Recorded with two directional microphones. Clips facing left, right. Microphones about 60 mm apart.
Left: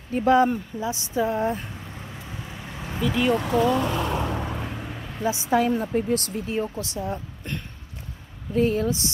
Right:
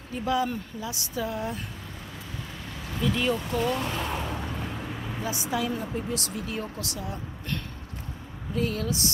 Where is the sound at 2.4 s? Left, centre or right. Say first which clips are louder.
Left 3 dB; left.